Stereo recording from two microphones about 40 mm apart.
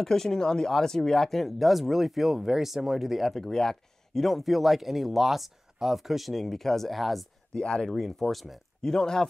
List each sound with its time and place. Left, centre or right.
0.0 s speech: centre
3.3 s speech: centre
7.5 s speech: left
7.9 s speech: centre
8.8 s speech: centre